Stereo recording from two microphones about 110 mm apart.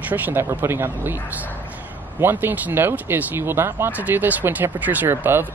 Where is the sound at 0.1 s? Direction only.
15° right (ahead or behind).